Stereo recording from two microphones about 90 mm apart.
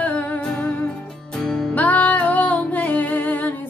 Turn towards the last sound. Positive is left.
turn(degrees=20)  # may be behind; listen again after turning